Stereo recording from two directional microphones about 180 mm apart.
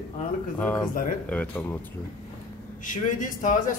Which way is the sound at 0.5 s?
10° left (ahead or behind).